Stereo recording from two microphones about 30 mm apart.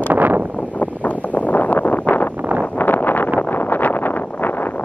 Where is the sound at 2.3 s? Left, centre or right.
Right.